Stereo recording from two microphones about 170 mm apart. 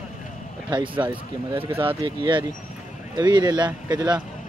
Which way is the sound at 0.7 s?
25° right (ahead or behind).